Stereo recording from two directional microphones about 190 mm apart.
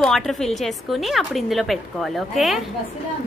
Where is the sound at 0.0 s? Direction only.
Centre (ahead or behind).